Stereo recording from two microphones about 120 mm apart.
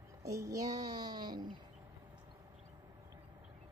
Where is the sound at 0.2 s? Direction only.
25° right (ahead or behind).